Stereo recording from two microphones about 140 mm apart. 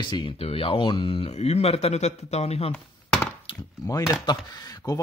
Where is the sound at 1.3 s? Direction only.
50° left (ahead or behind).